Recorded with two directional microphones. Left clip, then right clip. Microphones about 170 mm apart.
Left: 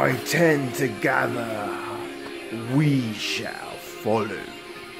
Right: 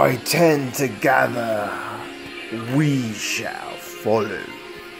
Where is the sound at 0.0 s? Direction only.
15° right (ahead or behind).